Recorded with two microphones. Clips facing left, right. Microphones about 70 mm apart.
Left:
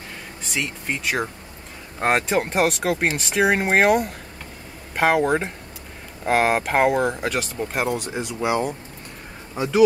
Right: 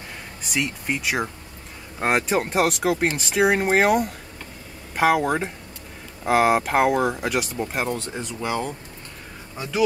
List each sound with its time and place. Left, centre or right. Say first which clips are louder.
0.4 s speech: right 2 dB; centre
7.9 s speech: left 3 dB; centre
9.6 s speech: left 6 dB; left